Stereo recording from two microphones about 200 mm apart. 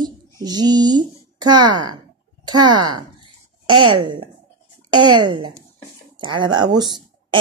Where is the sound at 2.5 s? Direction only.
20° right (ahead or behind).